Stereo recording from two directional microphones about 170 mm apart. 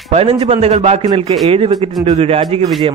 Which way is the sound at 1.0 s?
25° right (ahead or behind).